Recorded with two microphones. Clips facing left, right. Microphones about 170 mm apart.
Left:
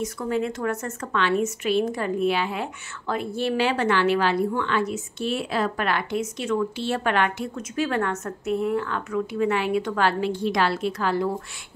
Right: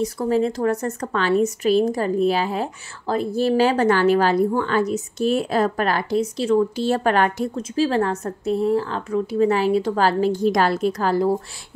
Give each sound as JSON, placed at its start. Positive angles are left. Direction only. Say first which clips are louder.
{"t": 0.0, "sound": "a woman's voice", "louder": "right 6 dB", "side_deg": -35}